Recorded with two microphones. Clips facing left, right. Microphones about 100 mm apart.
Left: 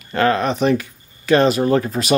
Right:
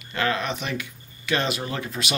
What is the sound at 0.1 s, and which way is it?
Speech, 40° left (ahead or behind).